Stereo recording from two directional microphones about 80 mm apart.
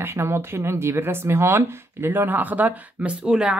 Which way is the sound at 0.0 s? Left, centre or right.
Right.